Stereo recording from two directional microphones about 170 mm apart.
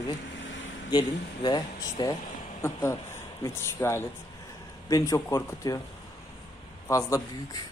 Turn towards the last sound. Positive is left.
turn(degrees=20)  # may be behind; listen again after turning